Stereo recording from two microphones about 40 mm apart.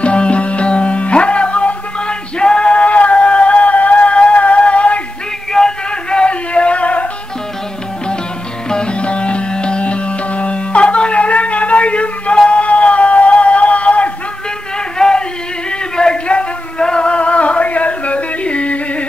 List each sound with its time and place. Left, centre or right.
0.0 s music: left
5.5 s music: centre; by 7.1 s left
8.6 s music: left
15.0 s a sound: centre